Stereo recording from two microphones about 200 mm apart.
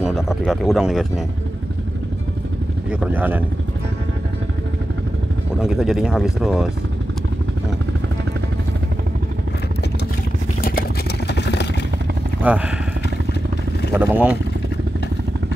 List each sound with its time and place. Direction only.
0.0 s speech: 5° right (ahead or behind)
2.9 s speech: 5° right (ahead or behind)
5.6 s speech: centre (ahead or behind)
10.6 s vehicle: 45° left (ahead or behind)
12.4 s speech: 5° right (ahead or behind)
13.9 s speech: 10° right (ahead or behind)